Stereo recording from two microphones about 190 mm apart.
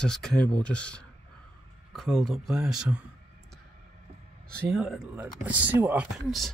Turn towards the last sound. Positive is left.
turn(degrees=0)  # may be behind; listen again after turning